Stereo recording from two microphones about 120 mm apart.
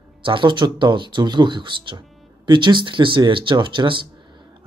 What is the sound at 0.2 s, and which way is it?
Speech, 45° right (ahead or behind).